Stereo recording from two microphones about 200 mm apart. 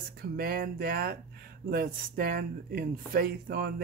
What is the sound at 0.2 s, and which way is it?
Speech, 45° right (ahead or behind).